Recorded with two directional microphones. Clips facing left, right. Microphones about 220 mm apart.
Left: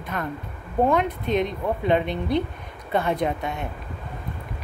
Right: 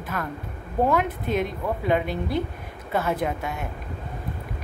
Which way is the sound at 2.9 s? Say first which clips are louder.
Left 2 dB; 5° right (ahead or behind).